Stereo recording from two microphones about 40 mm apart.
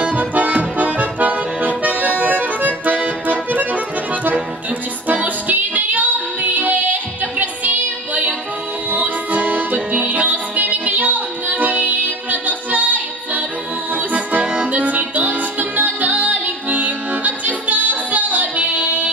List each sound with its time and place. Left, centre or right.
0.0 s accordion: right
5.0 s music: right
13.9 s accordion: right
14.8 s music: right